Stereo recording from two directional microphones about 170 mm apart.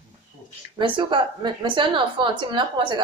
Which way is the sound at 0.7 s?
30° right (ahead or behind).